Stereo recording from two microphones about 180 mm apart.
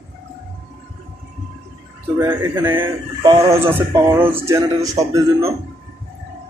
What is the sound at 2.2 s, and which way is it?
Speech, 15° right (ahead or behind).